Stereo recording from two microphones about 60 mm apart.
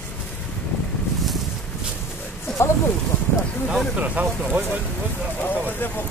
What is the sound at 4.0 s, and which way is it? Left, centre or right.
Speech, right.